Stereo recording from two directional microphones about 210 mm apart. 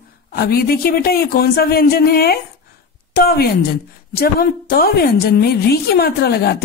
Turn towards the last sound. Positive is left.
turn(degrees=50)  # may be behind; listen again after turning